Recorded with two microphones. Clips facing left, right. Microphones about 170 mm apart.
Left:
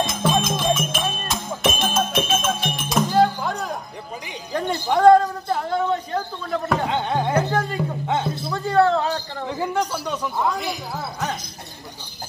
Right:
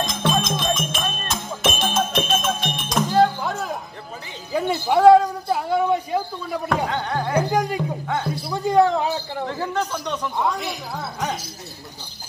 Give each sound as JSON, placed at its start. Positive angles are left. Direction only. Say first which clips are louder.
{"t": 0.0, "sound": "music", "louder": "left 1 dB", "side_deg": 5}
{"t": 4.5, "sound": "a sound", "louder": "right 2 dB", "side_deg": -5}
{"t": 6.9, "sound": "music", "louder": "left 2 dB", "side_deg": 20}
{"t": 7.3, "sound": "a man's voice", "louder": "right 1 dB", "side_deg": -15}
{"t": 8.1, "sound": "speech", "louder": "left 3 dB", "side_deg": 20}
{"t": 8.5, "sound": "a man's voice", "louder": "right 1 dB", "side_deg": -15}
{"t": 9.5, "sound": "speech", "louder": "left 3 dB", "side_deg": 10}